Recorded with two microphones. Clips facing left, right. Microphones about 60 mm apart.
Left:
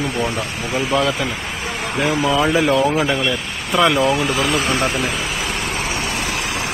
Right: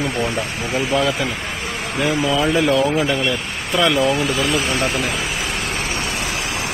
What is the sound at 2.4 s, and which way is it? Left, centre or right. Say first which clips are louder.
Speech: even; centre.